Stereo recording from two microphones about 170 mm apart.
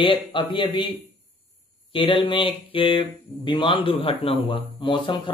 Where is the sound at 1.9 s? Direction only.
30° left (ahead or behind).